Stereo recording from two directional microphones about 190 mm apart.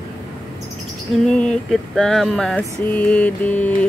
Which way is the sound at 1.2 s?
5° left (ahead or behind).